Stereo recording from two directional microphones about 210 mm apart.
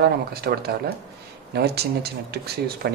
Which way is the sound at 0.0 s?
45° right (ahead or behind).